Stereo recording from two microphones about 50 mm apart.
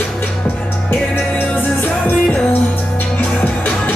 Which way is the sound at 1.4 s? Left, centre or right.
Left.